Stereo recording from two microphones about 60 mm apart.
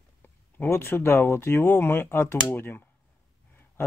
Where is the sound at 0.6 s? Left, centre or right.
Left.